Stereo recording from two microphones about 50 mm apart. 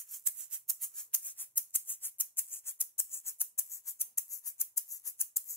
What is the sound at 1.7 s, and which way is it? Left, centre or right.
Music, left.